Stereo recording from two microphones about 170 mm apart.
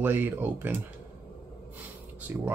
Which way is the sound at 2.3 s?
10° right (ahead or behind).